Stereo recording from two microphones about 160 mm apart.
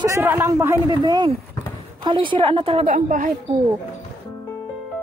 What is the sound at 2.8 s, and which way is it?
Speech, 55° right (ahead or behind).